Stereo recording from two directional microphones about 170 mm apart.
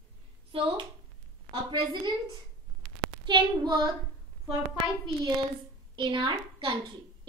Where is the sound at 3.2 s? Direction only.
25° right (ahead or behind).